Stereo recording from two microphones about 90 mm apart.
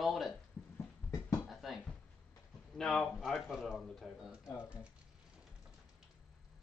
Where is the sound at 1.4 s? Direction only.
Centre (ahead or behind).